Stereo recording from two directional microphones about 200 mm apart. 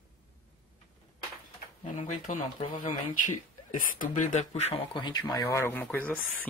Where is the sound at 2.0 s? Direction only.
40° left (ahead or behind); by 6.1 s 10° left (ahead or behind).